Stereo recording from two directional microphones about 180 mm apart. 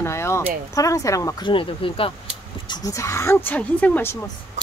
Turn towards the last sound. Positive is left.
turn(degrees=10)  # may be behind; listen again after turning